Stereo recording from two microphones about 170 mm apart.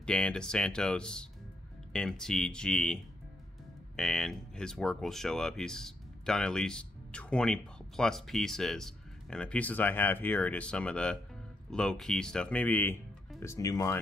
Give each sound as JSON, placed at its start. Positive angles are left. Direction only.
{"t": 0.0, "sound": "speech", "side_deg": 5}